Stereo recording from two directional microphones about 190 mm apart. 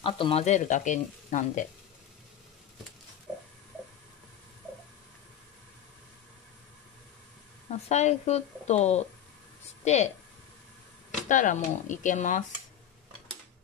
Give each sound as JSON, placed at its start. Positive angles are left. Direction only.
{"t": 0.0, "sound": "speech", "side_deg": 30}
{"t": 7.9, "sound": "speech", "side_deg": 35}
{"t": 11.2, "sound": "speech", "side_deg": 40}